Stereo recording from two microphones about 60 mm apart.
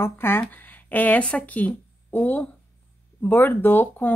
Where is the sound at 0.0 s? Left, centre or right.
Left.